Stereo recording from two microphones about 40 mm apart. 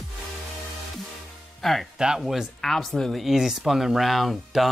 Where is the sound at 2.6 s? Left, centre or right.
Centre.